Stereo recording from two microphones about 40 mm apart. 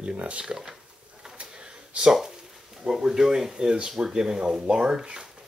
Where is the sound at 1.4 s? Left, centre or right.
Right.